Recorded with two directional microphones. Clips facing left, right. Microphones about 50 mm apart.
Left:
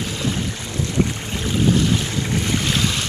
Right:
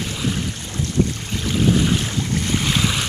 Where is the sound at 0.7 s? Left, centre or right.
Left.